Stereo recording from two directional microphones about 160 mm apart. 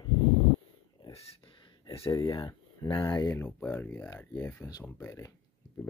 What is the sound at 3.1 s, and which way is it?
Speech, 15° left (ahead or behind).